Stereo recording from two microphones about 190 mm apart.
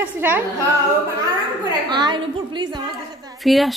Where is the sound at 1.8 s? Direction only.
25° right (ahead or behind).